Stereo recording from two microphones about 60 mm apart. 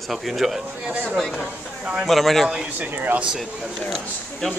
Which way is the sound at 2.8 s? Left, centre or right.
Right.